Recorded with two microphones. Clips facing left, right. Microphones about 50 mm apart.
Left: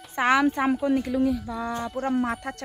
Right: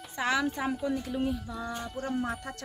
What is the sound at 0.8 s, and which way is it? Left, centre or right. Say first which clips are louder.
Speech: left 8 dB; left.